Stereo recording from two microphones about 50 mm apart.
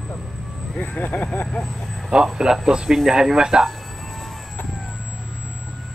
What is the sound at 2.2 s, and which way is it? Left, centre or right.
Speech, centre.